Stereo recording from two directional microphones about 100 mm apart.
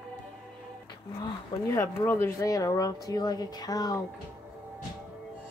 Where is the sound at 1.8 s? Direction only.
25° left (ahead or behind).